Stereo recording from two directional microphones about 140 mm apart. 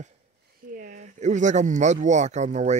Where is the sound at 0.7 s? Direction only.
80° right; by 2.7 s 55° right (ahead or behind).